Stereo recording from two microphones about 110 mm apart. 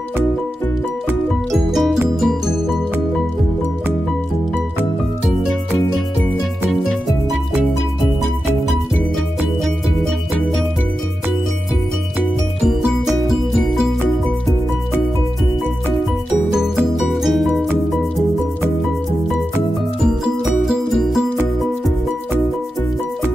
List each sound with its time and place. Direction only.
1.5 s music: centre (ahead or behind)
6.7 s music: centre (ahead or behind)
12.5 s music: 5° right (ahead or behind)
16.5 s music: 5° right (ahead or behind)
20.6 s music: centre (ahead or behind)